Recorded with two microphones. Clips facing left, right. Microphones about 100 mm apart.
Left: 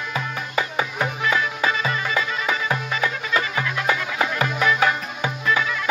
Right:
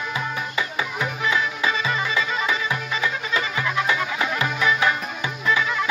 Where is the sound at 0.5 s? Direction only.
40° left (ahead or behind).